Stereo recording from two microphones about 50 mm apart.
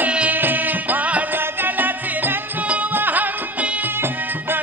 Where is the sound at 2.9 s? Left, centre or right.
Right.